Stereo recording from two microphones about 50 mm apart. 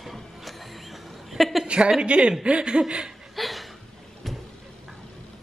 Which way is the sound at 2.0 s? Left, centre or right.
Right.